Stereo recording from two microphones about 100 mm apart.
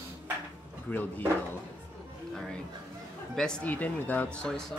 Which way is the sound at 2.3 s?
5° left (ahead or behind).